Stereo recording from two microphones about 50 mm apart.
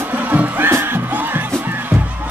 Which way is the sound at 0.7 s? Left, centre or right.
Right.